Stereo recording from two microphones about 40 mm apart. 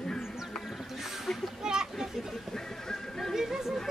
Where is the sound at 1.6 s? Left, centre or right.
Centre.